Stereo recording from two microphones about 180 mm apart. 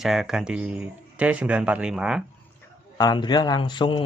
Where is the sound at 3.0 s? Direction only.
25° left (ahead or behind).